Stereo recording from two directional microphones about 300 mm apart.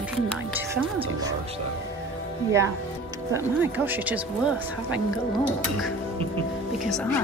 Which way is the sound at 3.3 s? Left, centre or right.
Centre.